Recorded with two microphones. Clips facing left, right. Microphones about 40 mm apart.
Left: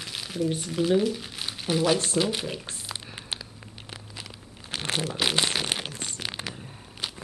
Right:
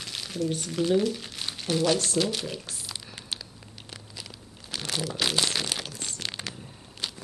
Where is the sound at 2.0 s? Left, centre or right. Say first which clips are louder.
Left 1 dB; left.